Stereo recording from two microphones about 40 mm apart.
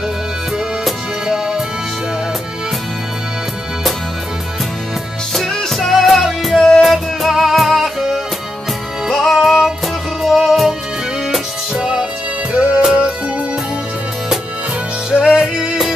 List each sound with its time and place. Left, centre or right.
1.2 s music: centre
5.3 s music: centre; by 12.8 s right
15.0 s music: right